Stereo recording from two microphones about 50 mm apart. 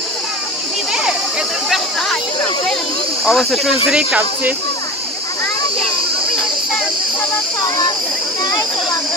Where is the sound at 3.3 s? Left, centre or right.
Centre.